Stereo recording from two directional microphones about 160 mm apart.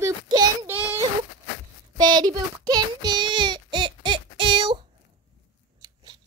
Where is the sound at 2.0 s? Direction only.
25° right (ahead or behind).